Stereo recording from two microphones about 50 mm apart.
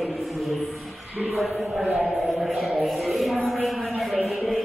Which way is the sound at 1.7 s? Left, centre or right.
Centre.